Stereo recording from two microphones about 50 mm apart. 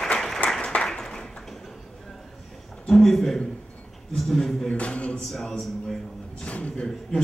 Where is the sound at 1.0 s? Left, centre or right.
Centre.